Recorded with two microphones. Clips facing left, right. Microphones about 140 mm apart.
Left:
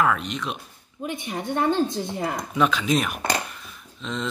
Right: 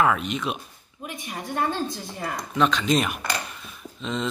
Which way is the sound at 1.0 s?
30° left (ahead or behind).